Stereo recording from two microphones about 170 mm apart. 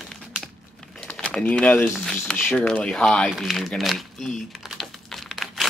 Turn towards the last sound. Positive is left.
turn(degrees=0)  # may be behind; listen again after turning